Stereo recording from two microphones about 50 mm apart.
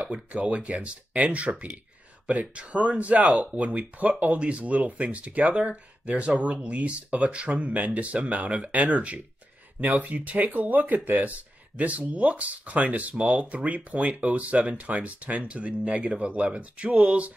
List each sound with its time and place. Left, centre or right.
0.0 s speech: right